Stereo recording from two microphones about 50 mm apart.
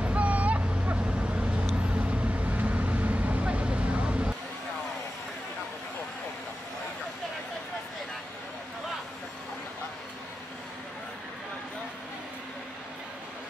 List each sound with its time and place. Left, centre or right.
0.0 s vehicle: right